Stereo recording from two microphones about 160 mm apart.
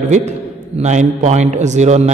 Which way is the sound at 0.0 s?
45° right (ahead or behind).